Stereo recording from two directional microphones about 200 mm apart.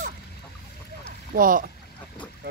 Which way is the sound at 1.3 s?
45° right (ahead or behind).